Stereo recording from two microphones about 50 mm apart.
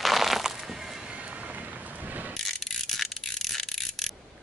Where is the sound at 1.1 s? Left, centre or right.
Right.